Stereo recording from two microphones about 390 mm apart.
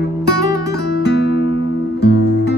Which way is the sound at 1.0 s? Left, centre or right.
Left.